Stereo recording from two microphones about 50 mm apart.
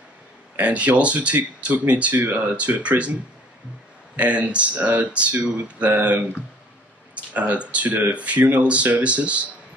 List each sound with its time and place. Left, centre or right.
0.6 s speech: right
2.2 s speech: right
2.5 s speech: right
4.2 s speech: right
7.3 s speech: right